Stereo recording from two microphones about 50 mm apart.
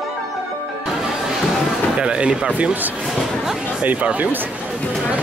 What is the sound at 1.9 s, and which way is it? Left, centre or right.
Speech, right.